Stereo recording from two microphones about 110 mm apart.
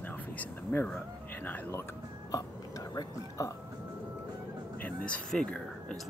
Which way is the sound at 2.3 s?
35° left (ahead or behind).